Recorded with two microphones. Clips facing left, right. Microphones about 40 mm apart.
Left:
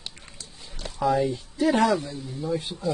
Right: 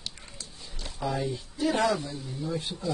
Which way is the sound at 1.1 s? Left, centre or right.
Left.